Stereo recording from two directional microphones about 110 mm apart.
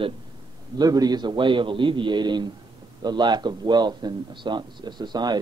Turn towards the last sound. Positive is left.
turn(degrees=-40)  # may be behind; listen again after turning